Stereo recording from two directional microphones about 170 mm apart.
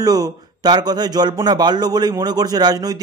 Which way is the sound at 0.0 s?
20° right (ahead or behind).